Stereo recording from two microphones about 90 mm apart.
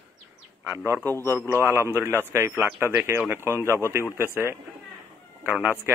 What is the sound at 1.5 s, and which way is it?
Speech, 25° right (ahead or behind).